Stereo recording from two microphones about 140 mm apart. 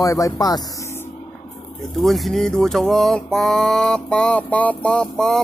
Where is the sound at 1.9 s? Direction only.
Centre (ahead or behind).